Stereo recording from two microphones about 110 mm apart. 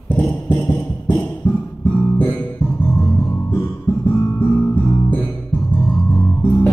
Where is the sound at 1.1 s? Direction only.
15° left (ahead or behind).